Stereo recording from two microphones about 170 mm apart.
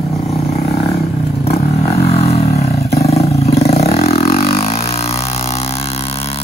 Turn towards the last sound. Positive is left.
turn(degrees=35)  # may be behind; listen again after turning